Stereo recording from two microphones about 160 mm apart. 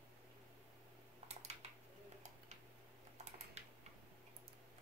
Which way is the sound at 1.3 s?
45° right (ahead or behind).